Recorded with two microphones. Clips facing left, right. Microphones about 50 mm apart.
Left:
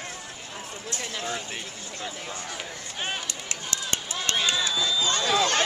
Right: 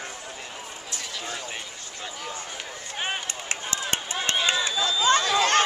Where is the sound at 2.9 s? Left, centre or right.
Right.